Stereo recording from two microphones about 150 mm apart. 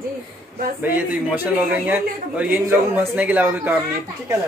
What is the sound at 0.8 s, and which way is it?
A man's voice, 10° right (ahead or behind).